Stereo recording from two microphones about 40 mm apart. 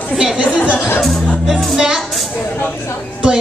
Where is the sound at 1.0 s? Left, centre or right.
Centre.